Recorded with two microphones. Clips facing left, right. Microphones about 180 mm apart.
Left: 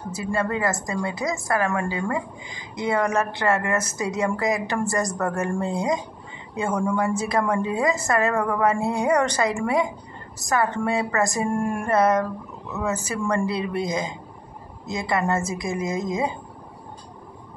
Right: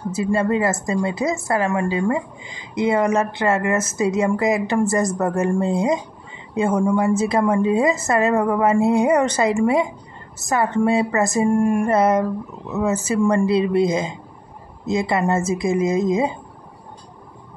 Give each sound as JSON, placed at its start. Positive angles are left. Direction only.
{"t": 0.1, "sound": "a woman's voice", "side_deg": -25}